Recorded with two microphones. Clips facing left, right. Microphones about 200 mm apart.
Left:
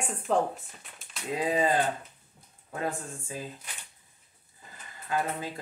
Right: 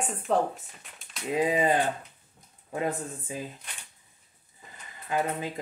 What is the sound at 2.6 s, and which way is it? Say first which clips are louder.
Speech: right 3 dB; 20° right (ahead or behind).